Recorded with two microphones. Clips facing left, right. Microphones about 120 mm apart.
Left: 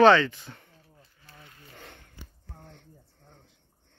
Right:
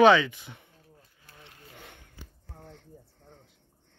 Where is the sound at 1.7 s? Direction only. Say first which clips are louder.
Left 2 dB; 10° right (ahead or behind).